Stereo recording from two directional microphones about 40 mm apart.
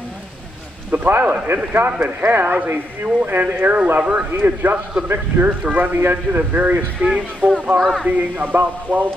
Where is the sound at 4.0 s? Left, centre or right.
Right.